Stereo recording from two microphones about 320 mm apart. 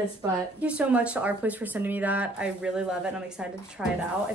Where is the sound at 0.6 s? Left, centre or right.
Centre.